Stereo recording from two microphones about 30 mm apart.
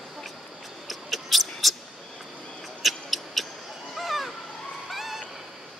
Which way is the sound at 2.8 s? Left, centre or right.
Centre.